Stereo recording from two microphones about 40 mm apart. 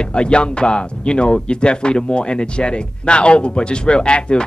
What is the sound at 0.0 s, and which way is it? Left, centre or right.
Speech, left.